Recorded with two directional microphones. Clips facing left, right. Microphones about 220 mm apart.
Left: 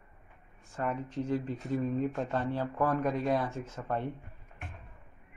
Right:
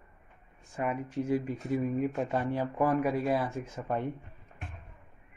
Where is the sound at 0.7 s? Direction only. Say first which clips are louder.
Right 2 dB; 10° right (ahead or behind).